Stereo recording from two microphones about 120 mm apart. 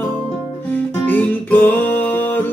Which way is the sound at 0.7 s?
15° left (ahead or behind).